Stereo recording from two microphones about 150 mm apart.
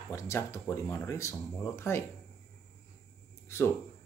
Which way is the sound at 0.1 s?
20° left (ahead or behind).